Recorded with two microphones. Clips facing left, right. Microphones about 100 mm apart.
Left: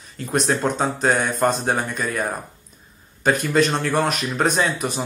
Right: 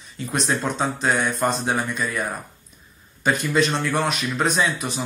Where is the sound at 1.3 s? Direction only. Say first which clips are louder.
Left 3 dB; centre (ahead or behind).